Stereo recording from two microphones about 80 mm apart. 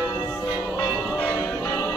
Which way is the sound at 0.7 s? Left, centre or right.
Left.